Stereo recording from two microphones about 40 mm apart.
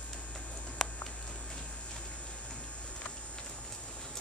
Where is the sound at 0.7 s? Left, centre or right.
Centre.